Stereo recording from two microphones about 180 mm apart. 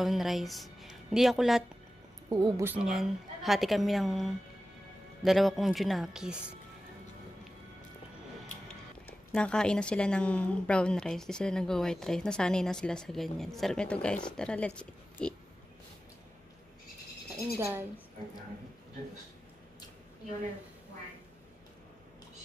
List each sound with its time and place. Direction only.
0.0 s a woman's voice: centre (ahead or behind)
2.2 s speech: 20° right (ahead or behind); by 6.3 s centre (ahead or behind)
9.3 s speech: 5° left (ahead or behind)
17.6 s a woman's voice: 15° right (ahead or behind)